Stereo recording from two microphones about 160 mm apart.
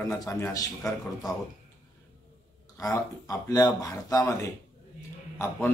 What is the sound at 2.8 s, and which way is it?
Speech, 20° left (ahead or behind).